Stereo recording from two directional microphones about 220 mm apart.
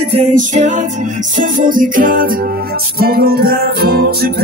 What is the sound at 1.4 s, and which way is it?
Music, 40° right (ahead or behind).